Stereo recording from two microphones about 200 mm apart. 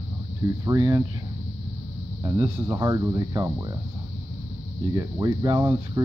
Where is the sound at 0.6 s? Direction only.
15° right (ahead or behind).